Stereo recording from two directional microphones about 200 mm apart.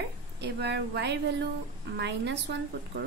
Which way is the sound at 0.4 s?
55° right (ahead or behind).